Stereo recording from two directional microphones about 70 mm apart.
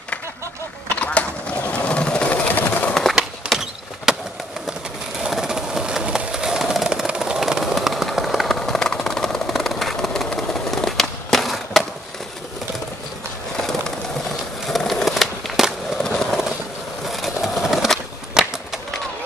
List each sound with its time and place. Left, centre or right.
0.9 s sewing machine: centre
2.9 s skateboard: centre
3.2 s a sound: centre
5.2 s train: centre
14.7 s skateboard: centre
17.1 s skateboard: centre